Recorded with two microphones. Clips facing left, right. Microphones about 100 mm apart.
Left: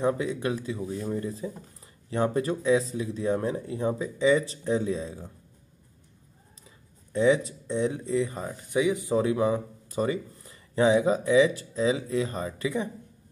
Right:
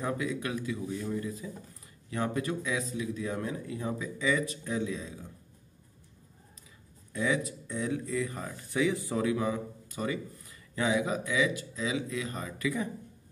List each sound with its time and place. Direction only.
0.0 s speech: 30° left (ahead or behind)
7.1 s speech: 30° left (ahead or behind)
9.2 s speech: 30° left (ahead or behind)